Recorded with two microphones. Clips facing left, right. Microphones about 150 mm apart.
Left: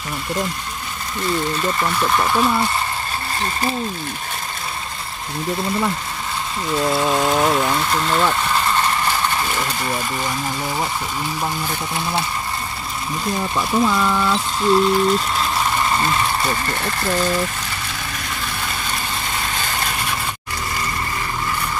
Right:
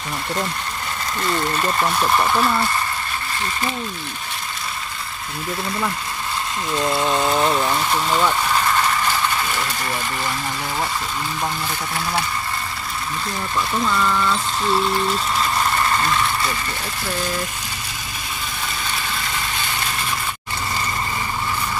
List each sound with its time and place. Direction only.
2.0 s speech: 5° right (ahead or behind)
2.4 s speech: 10° left (ahead or behind)
6.8 s speech: 5° left (ahead or behind)
11.9 s speech: 20° left (ahead or behind)
13.6 s speech: 10° left (ahead or behind)